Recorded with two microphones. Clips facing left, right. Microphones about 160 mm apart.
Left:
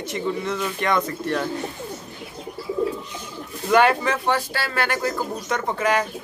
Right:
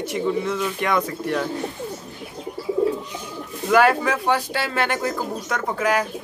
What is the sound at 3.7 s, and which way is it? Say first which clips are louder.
Speech: right 1 dB; 5° right (ahead or behind).